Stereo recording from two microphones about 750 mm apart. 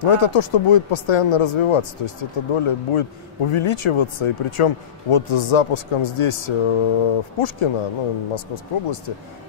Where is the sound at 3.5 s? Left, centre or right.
Left.